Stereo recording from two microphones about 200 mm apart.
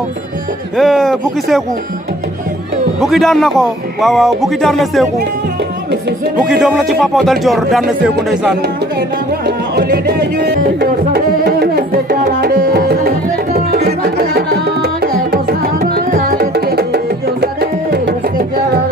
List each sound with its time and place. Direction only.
0.7 s a man's voice: centre (ahead or behind)
3.0 s a man's voice: centre (ahead or behind)
6.3 s a man's voice: 5° right (ahead or behind)
9.5 s music: 55° right (ahead or behind)